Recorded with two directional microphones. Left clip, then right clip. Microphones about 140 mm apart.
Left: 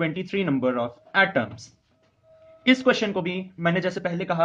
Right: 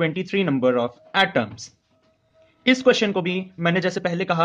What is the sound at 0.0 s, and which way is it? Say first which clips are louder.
Speech: right 4 dB; 30° right (ahead or behind).